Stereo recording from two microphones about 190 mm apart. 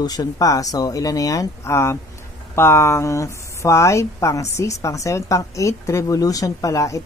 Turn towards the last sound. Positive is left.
turn(degrees=15)  # may be behind; listen again after turning